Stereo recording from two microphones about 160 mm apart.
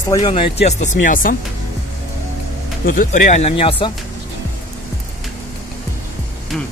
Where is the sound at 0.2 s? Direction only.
35° left (ahead or behind); by 1.3 s 55° left (ahead or behind).